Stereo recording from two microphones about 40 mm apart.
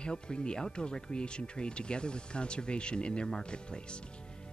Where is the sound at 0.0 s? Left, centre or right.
Left.